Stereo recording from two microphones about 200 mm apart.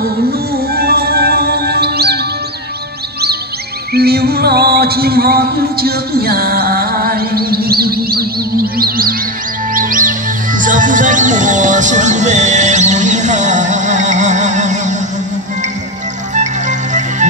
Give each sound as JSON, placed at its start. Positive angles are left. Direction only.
{"t": 0.0, "sound": "music", "side_deg": -50}
{"t": 3.9, "sound": "a sound", "side_deg": -50}
{"t": 9.8, "sound": "music", "side_deg": -45}
{"t": 16.3, "sound": "music", "side_deg": -35}